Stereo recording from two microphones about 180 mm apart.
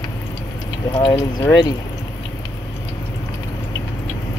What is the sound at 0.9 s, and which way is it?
Speech, 30° left (ahead or behind).